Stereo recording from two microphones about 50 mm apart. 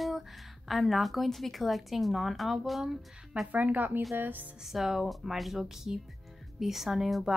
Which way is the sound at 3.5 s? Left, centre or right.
Right.